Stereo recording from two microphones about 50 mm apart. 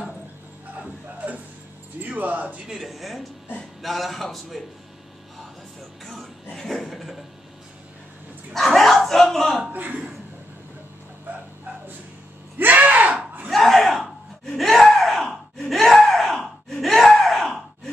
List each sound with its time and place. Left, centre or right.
1.1 s a sound: right
2.0 s speech: right
2.6 s speech: centre
2.9 s a man's voice: centre
6.5 s a man's voice: centre
8.5 s a sound: centre
9.7 s a man's voice: right
12.5 s a sound: right
13.5 s gasp: centre